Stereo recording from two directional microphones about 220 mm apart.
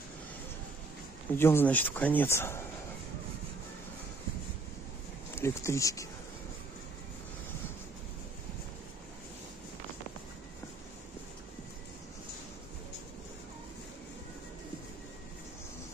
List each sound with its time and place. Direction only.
1.3 s speech: 10° left (ahead or behind)
5.3 s speech: 10° left (ahead or behind)